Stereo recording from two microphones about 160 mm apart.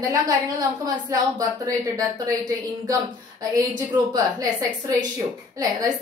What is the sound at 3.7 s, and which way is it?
A woman's voice, 25° right (ahead or behind).